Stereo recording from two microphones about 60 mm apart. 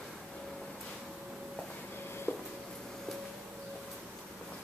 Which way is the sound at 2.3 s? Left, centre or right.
Centre.